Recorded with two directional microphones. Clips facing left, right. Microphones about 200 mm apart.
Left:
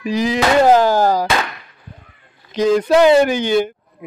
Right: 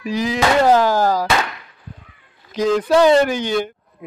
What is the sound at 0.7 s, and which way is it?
Speech, 25° left (ahead or behind).